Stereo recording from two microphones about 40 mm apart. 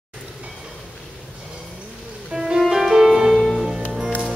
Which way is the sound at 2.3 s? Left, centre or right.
Centre.